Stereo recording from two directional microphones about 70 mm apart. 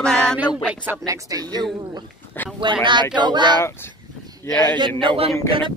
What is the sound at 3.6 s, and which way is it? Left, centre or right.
Speech, left.